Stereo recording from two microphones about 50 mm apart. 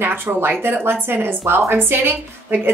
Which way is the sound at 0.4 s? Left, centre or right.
Right.